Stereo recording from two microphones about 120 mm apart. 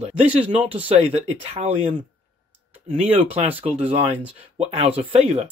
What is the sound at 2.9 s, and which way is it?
Speech, 50° right (ahead or behind).